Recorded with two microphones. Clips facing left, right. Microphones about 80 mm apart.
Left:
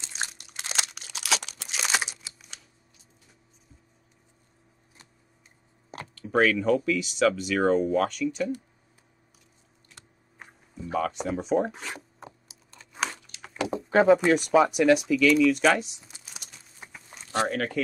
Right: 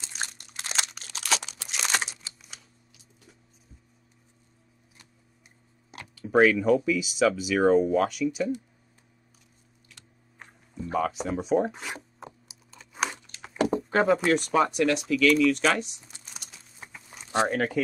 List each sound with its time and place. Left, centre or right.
0.2 s crumpling: centre
6.1 s speech: centre
10.4 s zipper: centre
12.2 s computer keyboard: centre
12.7 s crumpling: centre
13.6 s a sound: right
14.1 s speech: centre